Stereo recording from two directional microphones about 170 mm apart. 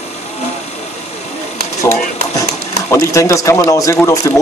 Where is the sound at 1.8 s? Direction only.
20° left (ahead or behind).